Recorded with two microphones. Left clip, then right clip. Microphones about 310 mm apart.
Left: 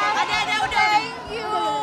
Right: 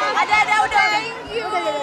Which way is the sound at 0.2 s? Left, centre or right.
Right.